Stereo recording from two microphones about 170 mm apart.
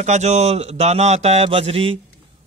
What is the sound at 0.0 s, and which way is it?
Speech, 40° right (ahead or behind).